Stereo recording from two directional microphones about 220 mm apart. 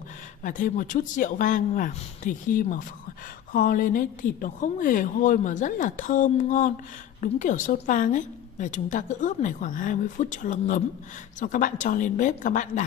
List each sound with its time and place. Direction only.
0.4 s a woman's voice: 35° left (ahead or behind)